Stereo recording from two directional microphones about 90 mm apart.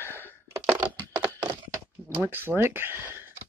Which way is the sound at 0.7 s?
45° right (ahead or behind).